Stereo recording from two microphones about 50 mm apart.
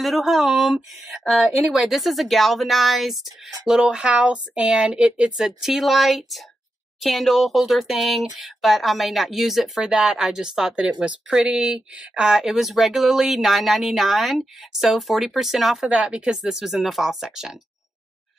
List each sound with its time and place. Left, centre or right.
0.0 s speech: centre
3.8 s speech: centre
10.9 s speech: right; by 17.6 s centre